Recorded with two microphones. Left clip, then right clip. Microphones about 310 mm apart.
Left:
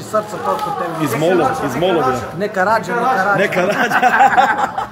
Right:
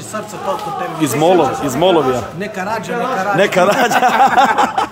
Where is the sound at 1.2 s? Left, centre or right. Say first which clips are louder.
Right 3 dB; centre.